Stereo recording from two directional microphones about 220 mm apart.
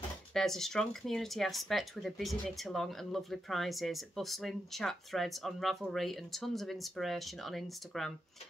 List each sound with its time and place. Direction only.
0.3 s speech: centre (ahead or behind)